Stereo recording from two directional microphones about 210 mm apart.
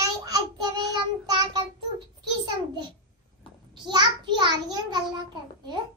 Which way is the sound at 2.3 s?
20° right (ahead or behind).